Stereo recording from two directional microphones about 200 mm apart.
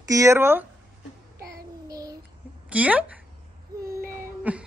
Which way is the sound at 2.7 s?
5° right (ahead or behind).